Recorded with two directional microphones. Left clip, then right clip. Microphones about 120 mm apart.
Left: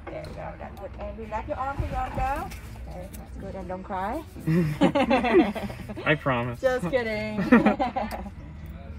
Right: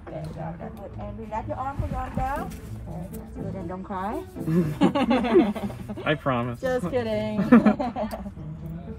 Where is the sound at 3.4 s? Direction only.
45° right (ahead or behind).